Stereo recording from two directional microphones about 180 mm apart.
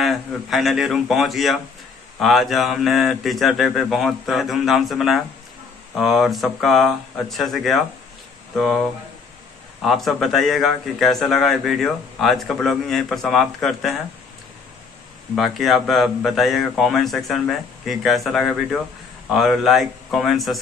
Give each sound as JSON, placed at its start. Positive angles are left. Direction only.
{"t": 0.0, "sound": "a man's voice", "side_deg": 0}
{"t": 15.3, "sound": "a man's voice", "side_deg": 0}